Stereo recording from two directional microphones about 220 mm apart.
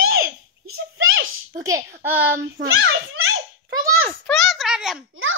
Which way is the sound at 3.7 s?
15° right (ahead or behind).